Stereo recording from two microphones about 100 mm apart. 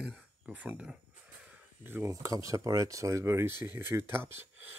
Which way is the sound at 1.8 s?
20° right (ahead or behind).